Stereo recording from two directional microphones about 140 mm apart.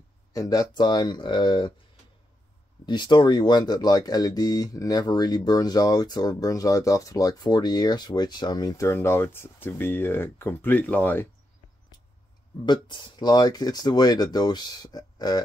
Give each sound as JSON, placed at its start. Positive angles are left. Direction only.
{"t": 0.3, "sound": "speech", "side_deg": 25}
{"t": 2.9, "sound": "speech", "side_deg": 30}
{"t": 12.6, "sound": "speech", "side_deg": 35}